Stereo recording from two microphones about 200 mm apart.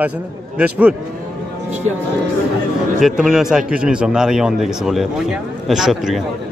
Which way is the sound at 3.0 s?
Centre (ahead or behind).